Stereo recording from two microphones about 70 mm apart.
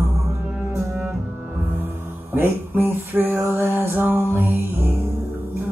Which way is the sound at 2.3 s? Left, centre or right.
Right.